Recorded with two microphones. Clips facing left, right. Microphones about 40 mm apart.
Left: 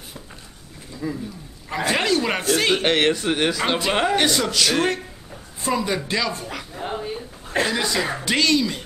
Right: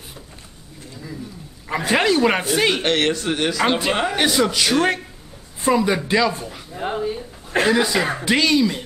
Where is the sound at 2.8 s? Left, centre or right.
Centre.